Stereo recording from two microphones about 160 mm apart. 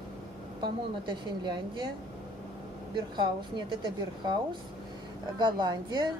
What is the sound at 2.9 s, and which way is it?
A woman's voice, 30° right (ahead or behind).